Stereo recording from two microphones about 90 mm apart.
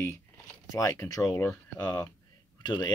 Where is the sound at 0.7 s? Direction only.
40° left (ahead or behind).